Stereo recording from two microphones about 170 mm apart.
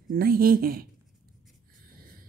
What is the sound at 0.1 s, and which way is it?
Speech, 60° right (ahead or behind).